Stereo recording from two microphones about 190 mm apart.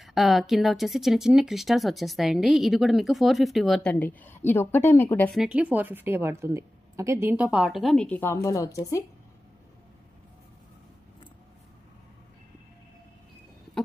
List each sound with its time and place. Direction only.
0.0 s speech: centre (ahead or behind)
5.3 s a woman's voice: 5° right (ahead or behind); by 9.0 s 15° left (ahead or behind)